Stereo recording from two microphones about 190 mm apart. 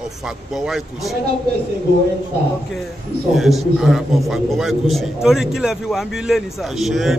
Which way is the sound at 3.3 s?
Centre (ahead or behind).